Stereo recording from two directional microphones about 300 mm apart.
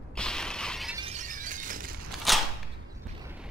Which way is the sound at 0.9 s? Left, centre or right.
Centre.